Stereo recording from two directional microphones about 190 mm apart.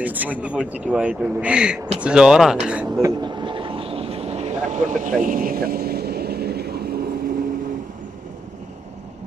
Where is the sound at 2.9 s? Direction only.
20° right (ahead or behind); by 7.3 s 55° right (ahead or behind).